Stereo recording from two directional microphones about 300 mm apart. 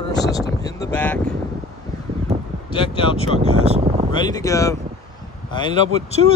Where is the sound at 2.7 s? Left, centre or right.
Centre.